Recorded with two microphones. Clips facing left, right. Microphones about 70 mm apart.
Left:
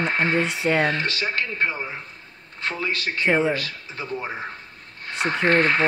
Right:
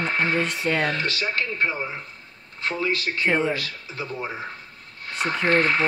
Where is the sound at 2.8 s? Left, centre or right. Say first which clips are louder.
Left 1 dB; left.